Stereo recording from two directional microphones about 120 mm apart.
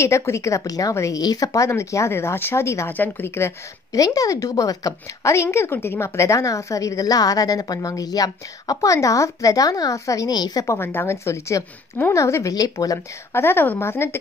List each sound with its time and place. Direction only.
0.0 s speech: 25° left (ahead or behind)